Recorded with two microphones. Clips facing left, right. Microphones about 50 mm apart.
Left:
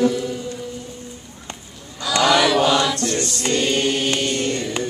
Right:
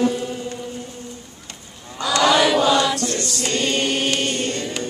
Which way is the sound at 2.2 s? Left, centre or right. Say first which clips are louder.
Even; centre.